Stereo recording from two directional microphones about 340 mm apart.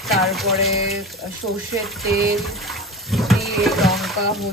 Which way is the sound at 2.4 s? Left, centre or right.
Centre.